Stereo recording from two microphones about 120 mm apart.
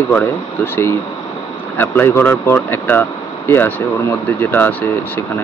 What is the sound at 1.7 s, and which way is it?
Speech, 20° left (ahead or behind).